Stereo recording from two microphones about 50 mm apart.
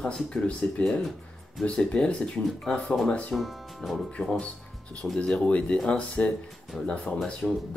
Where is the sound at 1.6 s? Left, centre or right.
Left.